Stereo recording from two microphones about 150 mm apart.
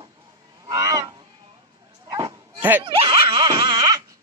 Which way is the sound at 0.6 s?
20° right (ahead or behind).